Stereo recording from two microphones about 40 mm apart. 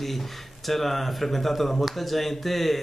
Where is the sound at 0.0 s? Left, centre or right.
Centre.